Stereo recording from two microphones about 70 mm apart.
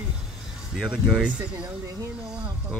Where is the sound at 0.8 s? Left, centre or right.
Centre.